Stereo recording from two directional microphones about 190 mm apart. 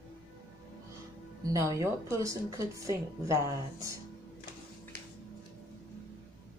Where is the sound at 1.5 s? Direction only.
15° right (ahead or behind).